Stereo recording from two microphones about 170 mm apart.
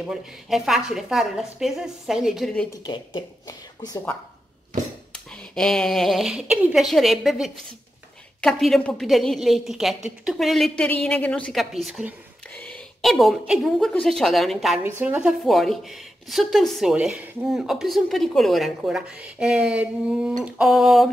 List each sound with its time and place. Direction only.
0.0 s speech: centre (ahead or behind)
2.8 s speech: 30° left (ahead or behind)
5.1 s a woman's voice: 5° left (ahead or behind)